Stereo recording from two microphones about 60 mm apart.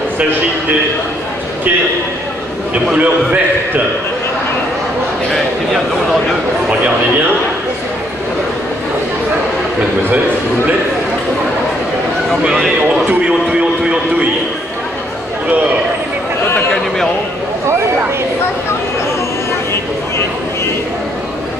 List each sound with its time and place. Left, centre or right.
2.7 s a man's voice: right
12.3 s speech: centre
13.2 s a man's voice: centre